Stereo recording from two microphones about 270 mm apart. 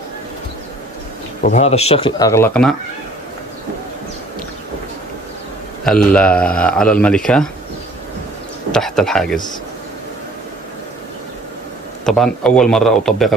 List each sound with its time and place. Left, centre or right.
1.4 s speech: left; by 2.7 s centre
5.9 s a man's voice: centre
8.7 s a man's voice: centre
12.1 s a man's voice: centre